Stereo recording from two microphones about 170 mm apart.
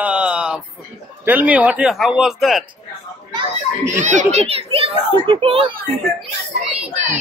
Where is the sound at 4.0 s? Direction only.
45° right (ahead or behind).